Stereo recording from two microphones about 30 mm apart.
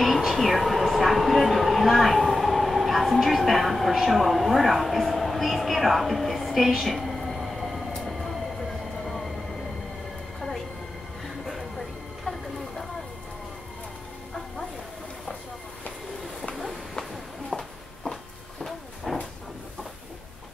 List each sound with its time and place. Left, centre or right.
0.3 s train: centre
6.8 s a sound: centre
8.0 s train: centre
11.2 s music: centre
12.3 s vehicle: left
17.5 s walk: centre
19.1 s train: centre